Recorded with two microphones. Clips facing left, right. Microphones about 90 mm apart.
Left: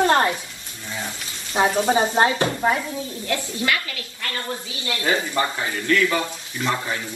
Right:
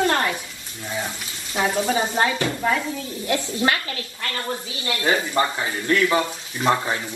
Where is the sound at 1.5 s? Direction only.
25° left (ahead or behind).